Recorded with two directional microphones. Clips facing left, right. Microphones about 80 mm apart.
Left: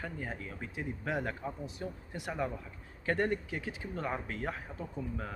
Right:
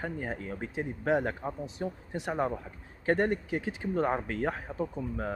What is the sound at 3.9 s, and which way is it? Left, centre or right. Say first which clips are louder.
Speech: right 9 dB; right.